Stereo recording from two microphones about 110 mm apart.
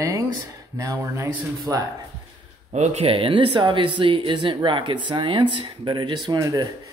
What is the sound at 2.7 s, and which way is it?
Speech, 85° right.